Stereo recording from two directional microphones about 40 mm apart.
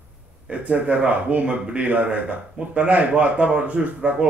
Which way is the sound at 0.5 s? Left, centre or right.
Right.